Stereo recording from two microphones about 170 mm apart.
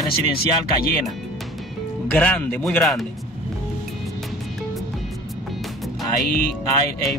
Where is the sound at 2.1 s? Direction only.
10° left (ahead or behind).